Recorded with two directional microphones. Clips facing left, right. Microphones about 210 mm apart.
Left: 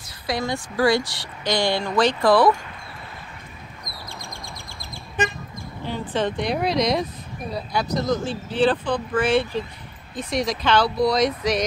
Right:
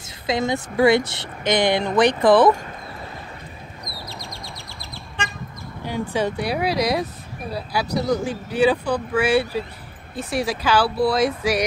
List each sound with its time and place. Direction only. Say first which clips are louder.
0.3 s speech: right 3 dB; 20° right (ahead or behind)
4.1 s chirp: right 2 dB; 50° left (ahead or behind)
5.9 s speech: right 1 dB; 10° right (ahead or behind)